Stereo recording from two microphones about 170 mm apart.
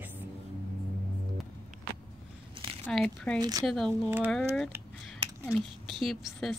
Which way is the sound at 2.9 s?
5° left (ahead or behind).